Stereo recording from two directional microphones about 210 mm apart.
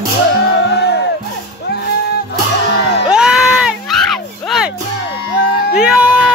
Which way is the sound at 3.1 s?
5° right (ahead or behind).